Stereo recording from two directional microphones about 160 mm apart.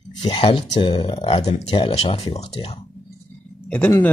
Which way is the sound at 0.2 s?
35° left (ahead or behind).